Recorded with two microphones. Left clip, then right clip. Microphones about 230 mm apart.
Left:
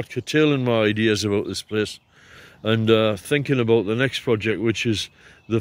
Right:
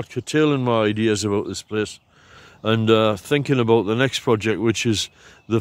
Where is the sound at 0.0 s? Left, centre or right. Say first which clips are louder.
Even; centre.